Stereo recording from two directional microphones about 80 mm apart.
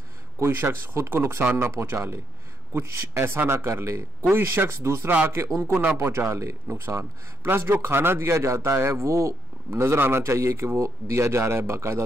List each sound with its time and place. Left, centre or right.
0.4 s a man's voice: right
5.6 s speech: right
5.9 s a man's voice: right